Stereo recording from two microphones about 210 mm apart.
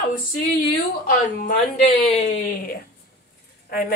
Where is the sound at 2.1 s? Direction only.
30° left (ahead or behind).